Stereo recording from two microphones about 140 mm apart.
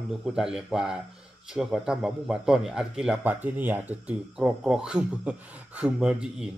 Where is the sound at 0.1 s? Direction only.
5° right (ahead or behind).